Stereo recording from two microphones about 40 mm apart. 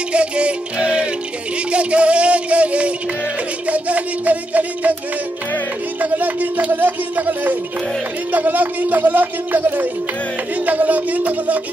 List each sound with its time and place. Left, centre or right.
0.1 s music: right
1.7 s a sound: right
3.6 s music: right
5.9 s a man's voice: right
9.6 s music: right
10.6 s a man's voice: right